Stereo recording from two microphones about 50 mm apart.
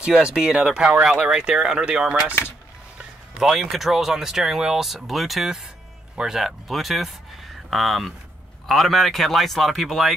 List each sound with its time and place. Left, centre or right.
0.0 s speech: centre
3.3 s speech: centre